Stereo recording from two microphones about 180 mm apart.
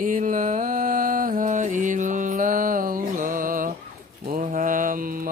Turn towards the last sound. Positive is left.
turn(degrees=-50)  # may be behind; listen again after turning